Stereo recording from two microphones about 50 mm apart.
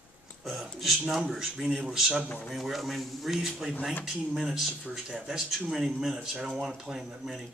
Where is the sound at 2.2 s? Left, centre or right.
Left.